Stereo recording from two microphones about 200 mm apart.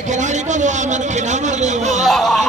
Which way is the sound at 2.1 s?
Centre (ahead or behind).